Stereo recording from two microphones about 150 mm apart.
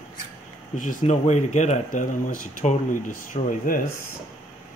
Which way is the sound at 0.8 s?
50° left (ahead or behind).